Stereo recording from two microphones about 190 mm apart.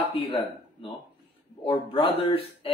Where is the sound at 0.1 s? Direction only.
30° left (ahead or behind).